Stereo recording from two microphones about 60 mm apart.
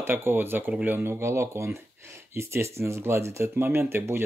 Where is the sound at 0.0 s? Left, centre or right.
Right.